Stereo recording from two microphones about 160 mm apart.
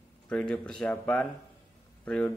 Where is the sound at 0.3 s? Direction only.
5° left (ahead or behind).